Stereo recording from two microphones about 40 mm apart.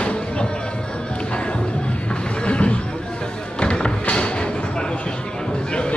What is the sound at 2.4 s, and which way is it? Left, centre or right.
Music, left.